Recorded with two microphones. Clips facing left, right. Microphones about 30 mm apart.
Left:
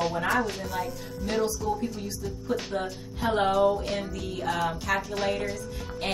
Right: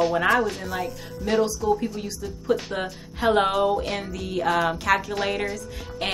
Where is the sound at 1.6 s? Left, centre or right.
Centre.